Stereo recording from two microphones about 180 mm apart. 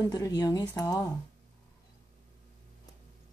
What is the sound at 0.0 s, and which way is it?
Speech, 20° left (ahead or behind).